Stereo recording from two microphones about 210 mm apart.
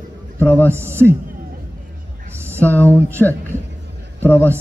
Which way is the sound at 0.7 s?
10° right (ahead or behind).